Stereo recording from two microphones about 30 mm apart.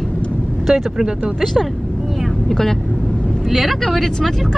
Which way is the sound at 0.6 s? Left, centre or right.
Centre.